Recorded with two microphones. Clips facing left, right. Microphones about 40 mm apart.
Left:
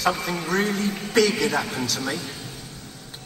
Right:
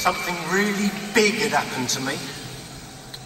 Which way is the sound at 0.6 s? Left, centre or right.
Right.